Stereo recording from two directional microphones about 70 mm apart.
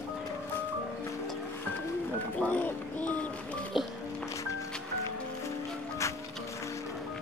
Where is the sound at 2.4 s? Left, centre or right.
Left.